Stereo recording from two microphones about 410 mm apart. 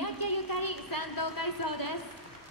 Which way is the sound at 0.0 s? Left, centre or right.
Left.